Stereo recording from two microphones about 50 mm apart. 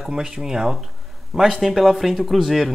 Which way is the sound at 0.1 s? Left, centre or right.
Centre.